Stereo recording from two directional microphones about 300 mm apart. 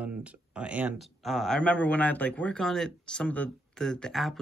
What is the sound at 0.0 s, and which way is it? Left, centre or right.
A man's voice, centre.